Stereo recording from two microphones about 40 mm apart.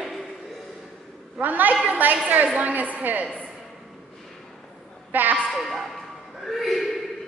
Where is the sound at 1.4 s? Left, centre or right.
Right.